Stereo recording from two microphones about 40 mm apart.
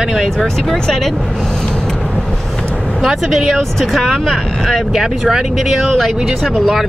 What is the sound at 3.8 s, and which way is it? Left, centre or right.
Speech, centre.